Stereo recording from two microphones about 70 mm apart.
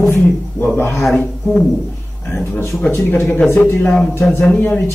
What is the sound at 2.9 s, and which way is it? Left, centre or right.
A man's voice, left.